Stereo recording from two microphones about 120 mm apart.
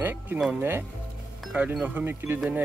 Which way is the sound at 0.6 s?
15° right (ahead or behind).